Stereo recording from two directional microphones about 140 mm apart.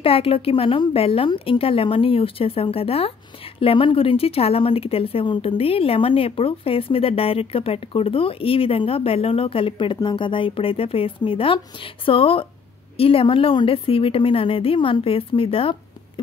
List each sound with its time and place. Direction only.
0.0 s a woman's voice: 40° left (ahead or behind)